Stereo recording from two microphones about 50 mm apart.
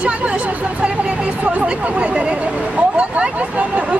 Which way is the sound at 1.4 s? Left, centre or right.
Right.